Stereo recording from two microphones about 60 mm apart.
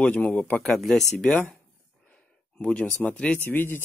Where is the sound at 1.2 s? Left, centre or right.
Centre.